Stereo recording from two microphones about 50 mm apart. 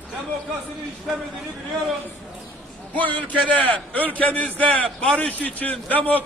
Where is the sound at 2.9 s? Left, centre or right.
Left.